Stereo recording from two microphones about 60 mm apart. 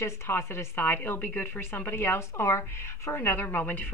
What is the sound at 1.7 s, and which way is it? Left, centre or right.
A woman's voice, left.